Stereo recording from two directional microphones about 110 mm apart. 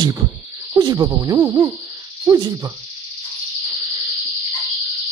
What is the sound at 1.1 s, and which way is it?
Owl, 30° right (ahead or behind).